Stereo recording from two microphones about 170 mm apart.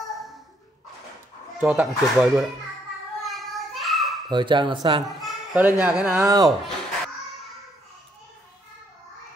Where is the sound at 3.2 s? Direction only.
Centre (ahead or behind).